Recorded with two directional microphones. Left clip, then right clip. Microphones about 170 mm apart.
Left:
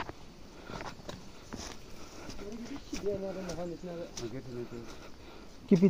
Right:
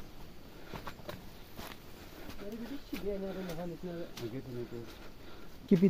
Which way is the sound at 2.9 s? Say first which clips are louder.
Left 3 dB; 60° left (ahead or behind).